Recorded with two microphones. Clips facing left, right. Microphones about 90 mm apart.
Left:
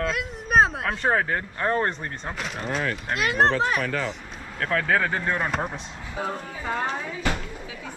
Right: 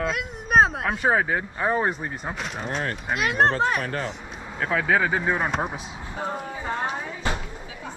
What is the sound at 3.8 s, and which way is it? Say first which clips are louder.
Speech: left 2 dB; 35° right (ahead or behind).